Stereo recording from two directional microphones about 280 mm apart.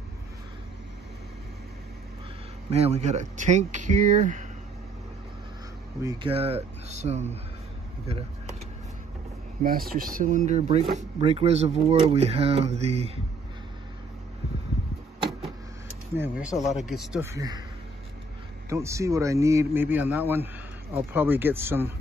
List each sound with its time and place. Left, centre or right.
2.7 s speech: right
6.0 s speech: centre
9.6 s speech: right
16.4 s speech: left
16.7 s speech: centre
18.7 s a man's voice: centre